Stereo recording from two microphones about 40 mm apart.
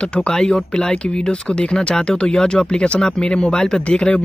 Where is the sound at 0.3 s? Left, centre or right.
Centre.